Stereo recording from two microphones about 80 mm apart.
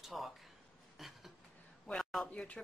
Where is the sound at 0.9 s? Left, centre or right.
Centre.